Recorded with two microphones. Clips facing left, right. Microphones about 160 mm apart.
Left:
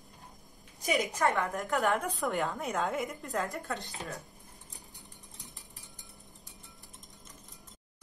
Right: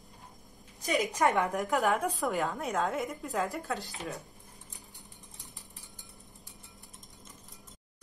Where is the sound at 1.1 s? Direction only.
15° right (ahead or behind).